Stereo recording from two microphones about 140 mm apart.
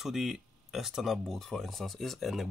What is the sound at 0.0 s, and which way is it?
Speech, centre (ahead or behind).